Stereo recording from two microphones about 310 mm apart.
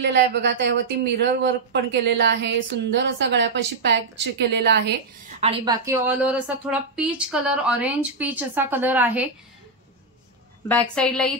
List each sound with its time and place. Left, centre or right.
0.0 s speech: right
5.4 s a woman's voice: centre
10.7 s a woman's voice: centre